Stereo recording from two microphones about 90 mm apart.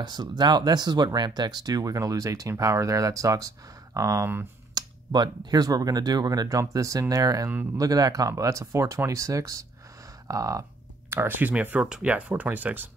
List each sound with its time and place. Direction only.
0.0 s speech: 50° right (ahead or behind)
4.7 s speech: 50° right (ahead or behind)
11.1 s speech: 25° right (ahead or behind)